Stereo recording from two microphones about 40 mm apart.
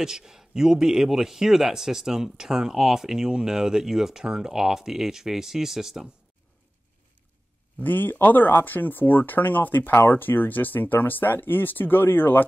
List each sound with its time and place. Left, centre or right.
0.0 s a man's voice: centre
7.8 s speech: left